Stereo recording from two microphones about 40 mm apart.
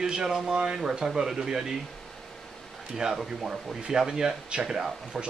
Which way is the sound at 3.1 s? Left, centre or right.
Centre.